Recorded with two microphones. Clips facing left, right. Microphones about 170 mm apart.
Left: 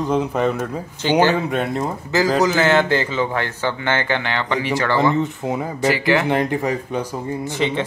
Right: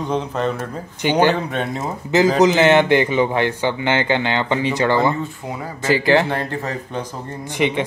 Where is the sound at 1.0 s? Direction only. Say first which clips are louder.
Left 1 dB; 15° right (ahead or behind).